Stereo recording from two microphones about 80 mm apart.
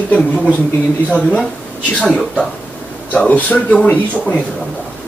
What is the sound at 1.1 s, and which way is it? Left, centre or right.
Speech, centre.